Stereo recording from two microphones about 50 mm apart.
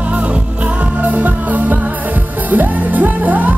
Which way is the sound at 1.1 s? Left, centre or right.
Right.